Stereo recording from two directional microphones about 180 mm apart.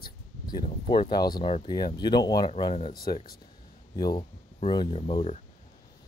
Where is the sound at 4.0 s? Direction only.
20° left (ahead or behind).